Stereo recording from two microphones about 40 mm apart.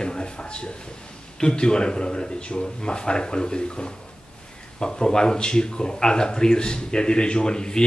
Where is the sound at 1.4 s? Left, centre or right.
Left.